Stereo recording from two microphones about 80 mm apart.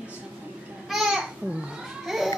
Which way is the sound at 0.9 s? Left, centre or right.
Centre.